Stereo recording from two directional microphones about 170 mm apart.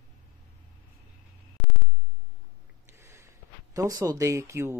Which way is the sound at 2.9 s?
15° right (ahead or behind).